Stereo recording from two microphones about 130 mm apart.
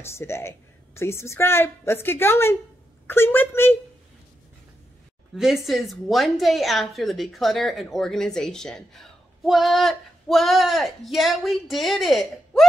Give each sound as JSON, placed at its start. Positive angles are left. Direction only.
{"t": 0.0, "sound": "a woman's voice", "side_deg": 20}
{"t": 5.3, "sound": "a woman's voice", "side_deg": 0}